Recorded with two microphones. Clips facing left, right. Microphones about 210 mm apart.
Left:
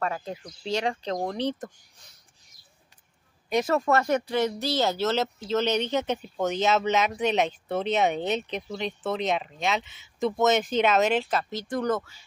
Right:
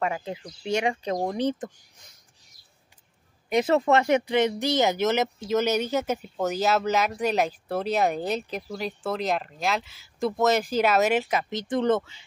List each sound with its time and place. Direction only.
0.0 s speech: 15° right (ahead or behind)
3.5 s speech: 20° right (ahead or behind)
11.7 s speech: 25° right (ahead or behind)